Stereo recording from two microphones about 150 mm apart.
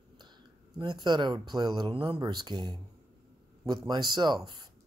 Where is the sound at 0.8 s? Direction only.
30° right (ahead or behind).